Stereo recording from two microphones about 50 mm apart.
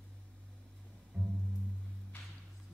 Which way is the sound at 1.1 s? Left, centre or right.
Right.